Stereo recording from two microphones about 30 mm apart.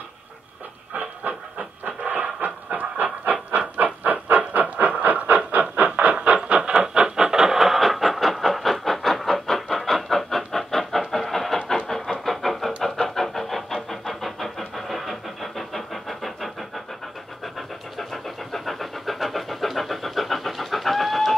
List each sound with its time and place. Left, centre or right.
1.2 s train: right
1.9 s pant: right
3.5 s a sound: right
4.6 s train: right
5.2 s a sound: right
6.2 s a sound: right
7.2 s printer: centre
7.5 s train: centre
11.7 s vehicle: left
12.3 s vehicle: centre